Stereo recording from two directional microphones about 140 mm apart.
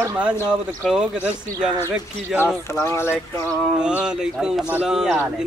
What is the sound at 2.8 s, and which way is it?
Speech, 15° left (ahead or behind).